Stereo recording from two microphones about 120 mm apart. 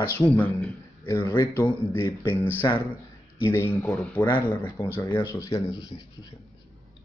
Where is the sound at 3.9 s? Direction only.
10° left (ahead or behind).